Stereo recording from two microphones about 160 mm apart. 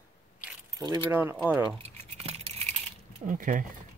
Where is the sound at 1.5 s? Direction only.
10° right (ahead or behind).